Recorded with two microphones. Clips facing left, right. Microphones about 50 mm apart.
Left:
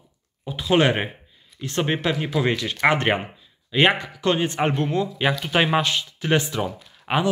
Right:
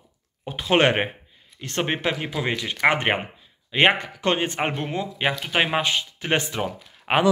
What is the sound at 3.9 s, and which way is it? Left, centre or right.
Speech, right.